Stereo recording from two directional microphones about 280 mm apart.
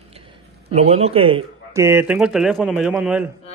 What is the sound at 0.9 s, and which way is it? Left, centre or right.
A man's voice, right.